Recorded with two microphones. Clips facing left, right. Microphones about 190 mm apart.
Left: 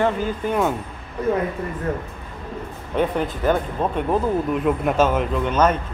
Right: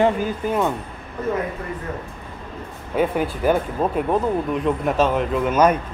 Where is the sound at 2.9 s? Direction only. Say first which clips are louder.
Right 1 dB; 10° right (ahead or behind).